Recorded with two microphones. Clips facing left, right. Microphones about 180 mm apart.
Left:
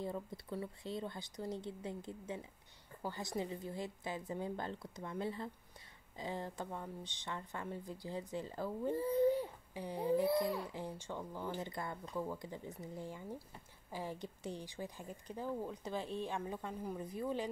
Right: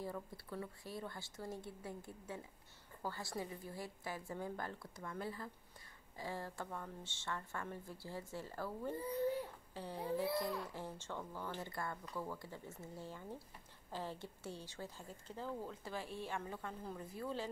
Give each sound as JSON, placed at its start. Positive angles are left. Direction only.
{"t": 0.0, "sound": "a woman's voice", "side_deg": 20}